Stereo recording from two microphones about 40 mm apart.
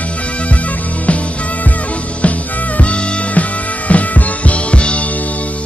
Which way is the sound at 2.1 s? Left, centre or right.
Left.